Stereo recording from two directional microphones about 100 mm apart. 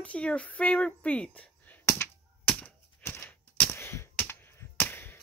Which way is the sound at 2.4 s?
20° left (ahead or behind).